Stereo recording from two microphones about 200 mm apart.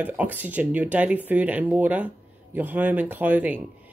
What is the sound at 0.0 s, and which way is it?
Speech, 10° right (ahead or behind).